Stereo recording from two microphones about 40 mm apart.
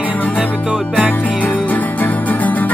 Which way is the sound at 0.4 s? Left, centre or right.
Right.